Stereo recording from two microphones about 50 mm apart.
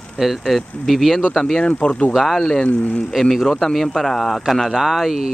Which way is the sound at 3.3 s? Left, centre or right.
Centre.